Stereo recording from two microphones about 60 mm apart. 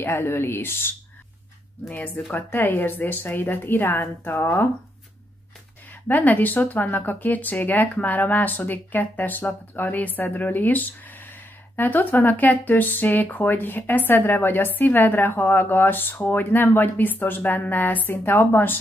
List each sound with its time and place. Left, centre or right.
0.0 s speech: left
2.3 s speech: left
6.0 s a woman's voice: left